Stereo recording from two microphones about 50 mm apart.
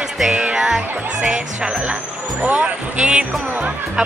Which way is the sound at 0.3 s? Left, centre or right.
Centre.